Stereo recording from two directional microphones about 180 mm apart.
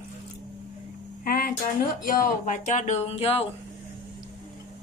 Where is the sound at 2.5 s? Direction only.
45° left (ahead or behind).